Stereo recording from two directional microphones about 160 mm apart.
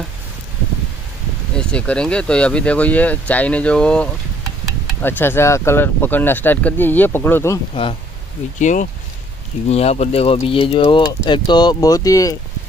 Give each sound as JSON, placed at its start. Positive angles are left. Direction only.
{"t": 1.6, "sound": "speech", "side_deg": 5}
{"t": 8.5, "sound": "speech", "side_deg": 50}